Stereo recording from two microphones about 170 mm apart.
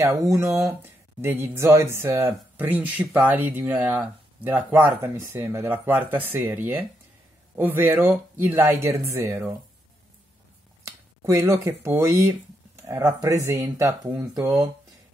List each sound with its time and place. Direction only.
0.0 s speech: 20° right (ahead or behind)
10.8 s speech: 15° right (ahead or behind)